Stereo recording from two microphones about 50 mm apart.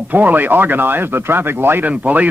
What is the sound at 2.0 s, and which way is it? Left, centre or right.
Speech, right.